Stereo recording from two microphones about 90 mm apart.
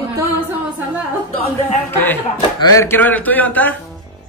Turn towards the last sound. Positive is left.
turn(degrees=20)  # may be behind; listen again after turning